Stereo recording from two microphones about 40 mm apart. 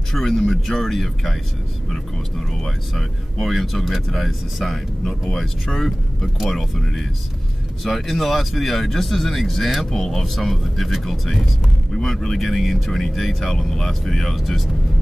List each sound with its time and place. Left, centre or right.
0.1 s speech: centre
11.9 s speech: centre
12.4 s speech: centre